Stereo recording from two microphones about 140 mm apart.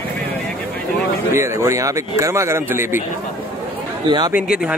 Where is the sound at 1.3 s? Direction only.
20° right (ahead or behind).